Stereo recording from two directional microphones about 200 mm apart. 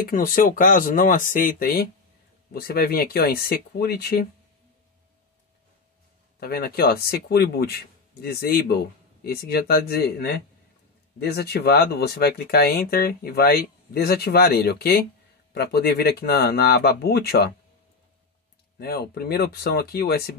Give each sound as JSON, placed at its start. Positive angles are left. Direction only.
{"t": 0.0, "sound": "speech", "side_deg": 45}
{"t": 6.4, "sound": "speech", "side_deg": 50}
{"t": 18.8, "sound": "speech", "side_deg": 50}